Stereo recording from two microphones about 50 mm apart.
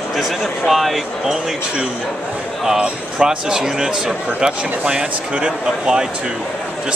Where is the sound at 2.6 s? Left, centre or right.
Centre.